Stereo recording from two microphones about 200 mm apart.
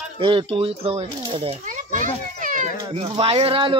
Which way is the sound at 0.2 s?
25° right (ahead or behind).